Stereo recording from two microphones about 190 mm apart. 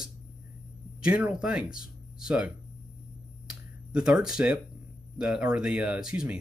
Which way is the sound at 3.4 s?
5° right (ahead or behind).